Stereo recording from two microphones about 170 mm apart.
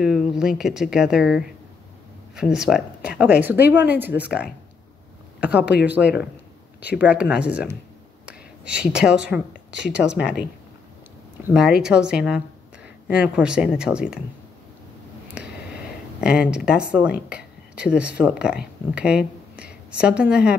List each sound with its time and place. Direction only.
0.0 s speech: 5° right (ahead or behind)
5.4 s speech: 5° right (ahead or behind)
6.0 s speech: 70° left (ahead or behind)
7.0 s speech: 5° right (ahead or behind)
8.3 s a sound: 5° right (ahead or behind)
8.9 s speech: 5° right (ahead or behind)
11.5 s speech: 5° right (ahead or behind)
16.2 s speech: 5° right (ahead or behind)